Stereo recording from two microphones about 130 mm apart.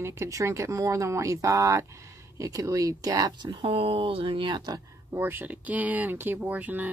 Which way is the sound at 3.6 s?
45° right (ahead or behind).